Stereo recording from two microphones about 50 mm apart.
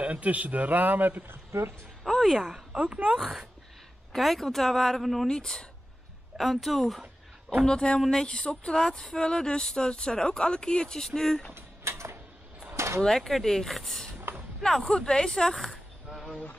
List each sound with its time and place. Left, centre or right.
0.0 s a man's voice: right
1.2 s speech: right
2.0 s music: centre
2.3 s speech: centre
2.7 s speech: right
3.2 s speech: centre
4.1 s a woman's voice: centre
5.3 s speech: centre
6.3 s a woman's voice: centre
7.6 s speech: centre
11.5 s a sound: right
13.0 s speech: centre
14.3 s a sound: right
14.6 s speech: centre